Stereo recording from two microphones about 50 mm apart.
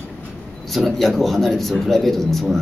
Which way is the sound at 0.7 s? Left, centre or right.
Centre.